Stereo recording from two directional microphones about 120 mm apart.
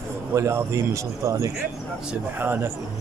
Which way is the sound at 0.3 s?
25° right (ahead or behind).